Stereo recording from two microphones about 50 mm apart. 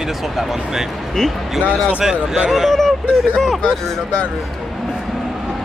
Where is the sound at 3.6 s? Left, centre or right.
Centre.